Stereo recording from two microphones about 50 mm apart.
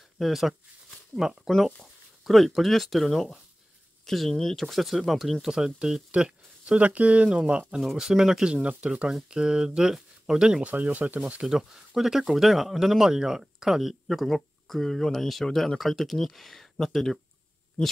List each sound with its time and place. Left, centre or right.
0.2 s speech: centre
2.2 s speech: centre
6.1 s speech: right
7.8 s speech: centre
8.6 s speech: right
10.6 s speech: right
11.4 s speech: centre